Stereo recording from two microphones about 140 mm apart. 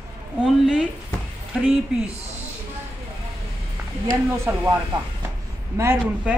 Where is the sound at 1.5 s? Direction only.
Centre (ahead or behind).